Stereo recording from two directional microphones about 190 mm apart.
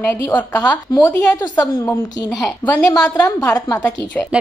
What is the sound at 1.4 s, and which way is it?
A woman's voice, 20° left (ahead or behind).